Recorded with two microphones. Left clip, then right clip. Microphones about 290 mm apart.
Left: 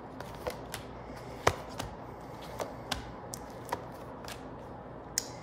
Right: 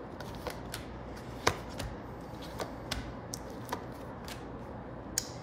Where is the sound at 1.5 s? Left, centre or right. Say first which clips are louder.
Left 2 dB; left.